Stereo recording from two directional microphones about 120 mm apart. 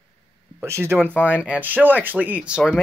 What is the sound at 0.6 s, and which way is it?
Speech, 20° right (ahead or behind).